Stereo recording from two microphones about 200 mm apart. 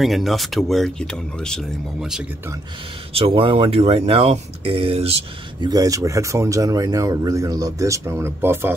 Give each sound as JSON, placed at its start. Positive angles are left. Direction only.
{"t": 0.0, "sound": "speech", "side_deg": 0}
{"t": 3.1, "sound": "speech", "side_deg": -30}
{"t": 5.7, "sound": "speech", "side_deg": -20}